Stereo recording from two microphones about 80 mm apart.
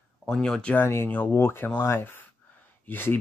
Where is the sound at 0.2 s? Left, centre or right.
Centre.